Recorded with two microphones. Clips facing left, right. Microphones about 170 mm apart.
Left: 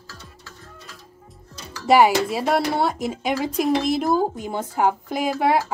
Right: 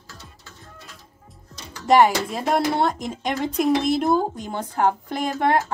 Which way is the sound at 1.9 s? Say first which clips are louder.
Left 1 dB; 10° left (ahead or behind).